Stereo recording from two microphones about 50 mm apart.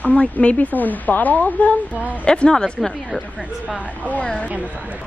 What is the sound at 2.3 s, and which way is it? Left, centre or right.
Speech, centre.